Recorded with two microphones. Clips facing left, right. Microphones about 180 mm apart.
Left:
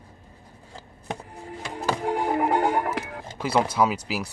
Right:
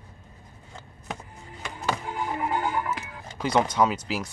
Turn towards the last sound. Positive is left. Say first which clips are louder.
# even
turn(degrees=5)  # may be behind; listen again after turning